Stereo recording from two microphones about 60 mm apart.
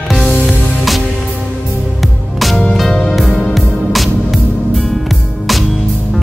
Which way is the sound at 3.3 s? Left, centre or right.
Centre.